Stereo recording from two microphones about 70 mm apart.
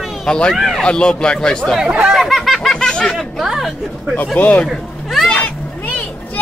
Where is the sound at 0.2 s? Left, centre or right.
Centre.